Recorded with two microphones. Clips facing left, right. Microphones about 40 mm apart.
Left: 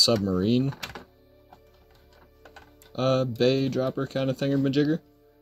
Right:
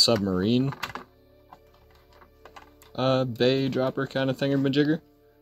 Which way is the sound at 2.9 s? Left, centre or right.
Right.